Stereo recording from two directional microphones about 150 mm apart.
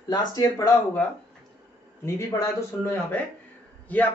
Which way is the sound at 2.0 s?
20° left (ahead or behind).